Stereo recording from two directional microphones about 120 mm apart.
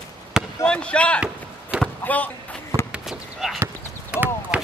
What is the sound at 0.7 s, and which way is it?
Basketball bounce, 10° left (ahead or behind).